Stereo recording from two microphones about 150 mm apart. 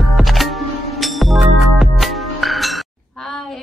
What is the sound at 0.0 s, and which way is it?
Music, centre (ahead or behind).